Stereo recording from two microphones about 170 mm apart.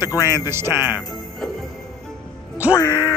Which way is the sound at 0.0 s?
20° left (ahead or behind).